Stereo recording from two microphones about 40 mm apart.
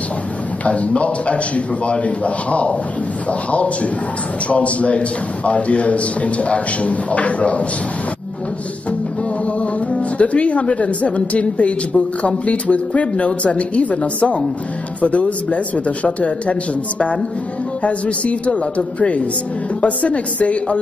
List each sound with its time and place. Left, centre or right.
0.7 s speech: left
9.6 s speech: left
17.8 s speech: left